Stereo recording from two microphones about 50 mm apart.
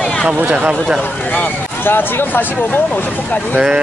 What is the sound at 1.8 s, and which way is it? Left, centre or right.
Speech, left.